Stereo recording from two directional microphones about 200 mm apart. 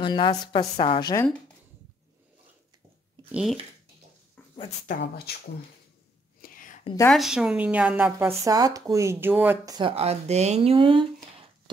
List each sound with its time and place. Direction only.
0.0 s a woman's voice: 25° left (ahead or behind)
3.3 s speech: 5° right (ahead or behind)
4.4 s a sound: 10° left (ahead or behind)
4.8 s speech: 55° left (ahead or behind)
6.4 s whispering: 40° left (ahead or behind)
7.1 s a woman's voice: centre (ahead or behind)
9.8 s speech: 30° right (ahead or behind)